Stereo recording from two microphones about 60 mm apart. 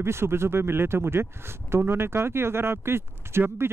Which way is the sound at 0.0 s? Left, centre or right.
Right.